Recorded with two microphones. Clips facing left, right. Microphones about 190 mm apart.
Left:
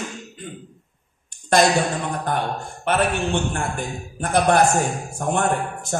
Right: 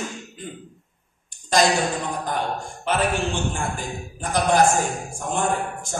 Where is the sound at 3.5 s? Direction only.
60° left (ahead or behind).